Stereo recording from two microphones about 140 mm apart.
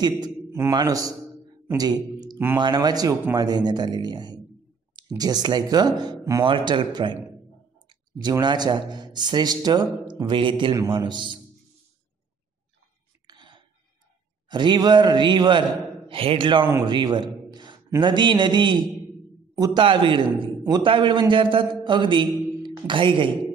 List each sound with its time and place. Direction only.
0.0 s a sound: 30° right (ahead or behind)
0.6 s speech: 25° right (ahead or behind)
2.3 s speech: 15° right (ahead or behind)
2.6 s a man's voice: 30° right (ahead or behind)
13.3 s a sound: 30° right (ahead or behind)
14.5 s a man's voice: 30° right (ahead or behind)